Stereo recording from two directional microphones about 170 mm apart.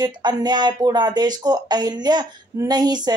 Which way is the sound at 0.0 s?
25° right (ahead or behind).